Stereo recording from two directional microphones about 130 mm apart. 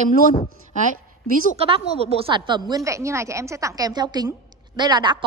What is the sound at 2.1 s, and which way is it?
A woman's voice, 35° right (ahead or behind).